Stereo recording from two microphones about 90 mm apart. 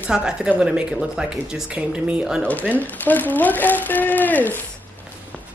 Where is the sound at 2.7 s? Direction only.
20° left (ahead or behind).